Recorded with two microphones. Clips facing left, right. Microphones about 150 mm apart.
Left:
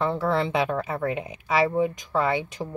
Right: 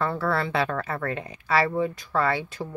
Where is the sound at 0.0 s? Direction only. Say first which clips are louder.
Left 2 dB; 20° left (ahead or behind).